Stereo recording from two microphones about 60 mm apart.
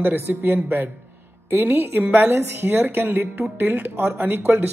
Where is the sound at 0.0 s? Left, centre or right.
Right.